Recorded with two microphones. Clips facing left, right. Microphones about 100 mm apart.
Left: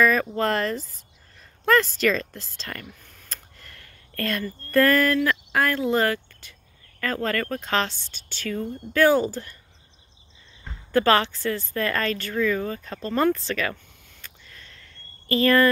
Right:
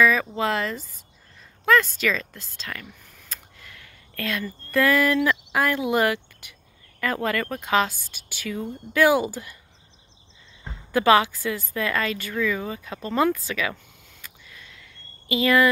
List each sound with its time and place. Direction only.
0.0 s speech: centre (ahead or behind)
5.1 s speech: 15° right (ahead or behind)
6.4 s a sound: 15° right (ahead or behind)
7.0 s speech: 15° right (ahead or behind)
10.6 s speech: 15° right (ahead or behind)
15.2 s speech: 5° right (ahead or behind)